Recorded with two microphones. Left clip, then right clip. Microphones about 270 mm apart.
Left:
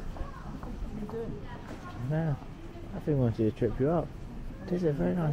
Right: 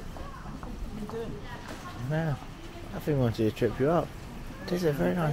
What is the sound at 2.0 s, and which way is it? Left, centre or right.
Speech, right.